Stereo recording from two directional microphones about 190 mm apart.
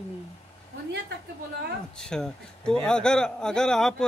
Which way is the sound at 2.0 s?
5° left (ahead or behind).